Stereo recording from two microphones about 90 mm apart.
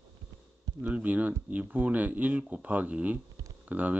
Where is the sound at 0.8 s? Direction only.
15° right (ahead or behind).